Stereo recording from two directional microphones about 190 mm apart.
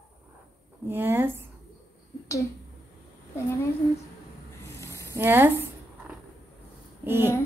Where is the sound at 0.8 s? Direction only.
10° right (ahead or behind).